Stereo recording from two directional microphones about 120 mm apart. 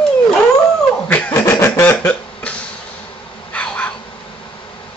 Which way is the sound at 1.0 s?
15° left (ahead or behind).